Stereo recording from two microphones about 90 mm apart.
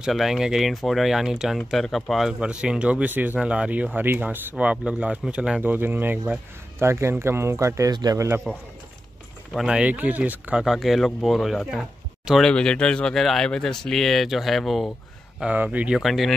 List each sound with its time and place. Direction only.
0.0 s speech: 5° right (ahead or behind)
5.6 s speech: 20° right (ahead or behind); by 8.3 s 45° right (ahead or behind)
9.5 s speech: 5° right (ahead or behind)
10.6 s speech: centre (ahead or behind)
12.4 s speech: 5° left (ahead or behind)
15.3 s speech: 15° right (ahead or behind)
16.0 s speech: centre (ahead or behind)